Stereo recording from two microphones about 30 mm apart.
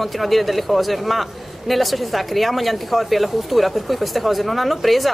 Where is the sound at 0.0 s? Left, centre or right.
Centre.